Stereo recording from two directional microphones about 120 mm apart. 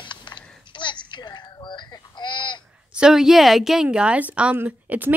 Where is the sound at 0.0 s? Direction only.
40° left (ahead or behind).